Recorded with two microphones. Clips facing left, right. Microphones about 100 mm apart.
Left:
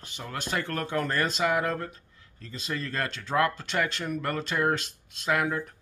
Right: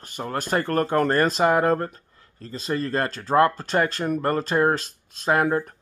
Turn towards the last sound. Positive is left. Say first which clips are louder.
# right 6 dB
turn(degrees=-45)  # may be behind; listen again after turning